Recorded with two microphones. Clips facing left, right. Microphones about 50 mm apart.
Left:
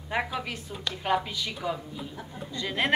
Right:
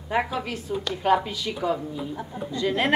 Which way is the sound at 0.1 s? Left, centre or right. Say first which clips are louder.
Right 4 dB; centre.